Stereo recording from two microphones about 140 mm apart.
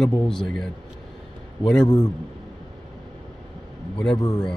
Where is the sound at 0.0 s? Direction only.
5° left (ahead or behind).